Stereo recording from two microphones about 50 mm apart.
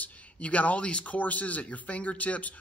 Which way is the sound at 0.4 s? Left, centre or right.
Left.